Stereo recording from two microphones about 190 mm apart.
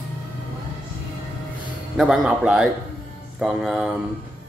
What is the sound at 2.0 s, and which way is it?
A man's voice, 5° right (ahead or behind).